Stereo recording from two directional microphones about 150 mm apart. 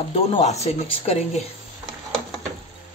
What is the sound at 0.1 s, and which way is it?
Speech, 45° left (ahead or behind).